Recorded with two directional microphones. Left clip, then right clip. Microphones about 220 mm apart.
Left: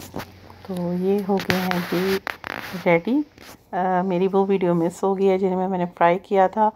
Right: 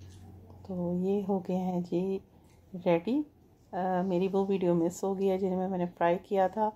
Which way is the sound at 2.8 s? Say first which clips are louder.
Left 9 dB; 15° left (ahead or behind).